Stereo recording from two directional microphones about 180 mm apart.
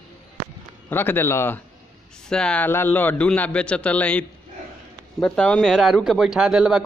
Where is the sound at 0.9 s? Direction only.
10° left (ahead or behind).